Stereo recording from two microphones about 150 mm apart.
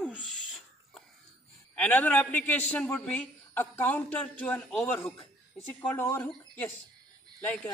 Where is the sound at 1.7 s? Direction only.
10° left (ahead or behind).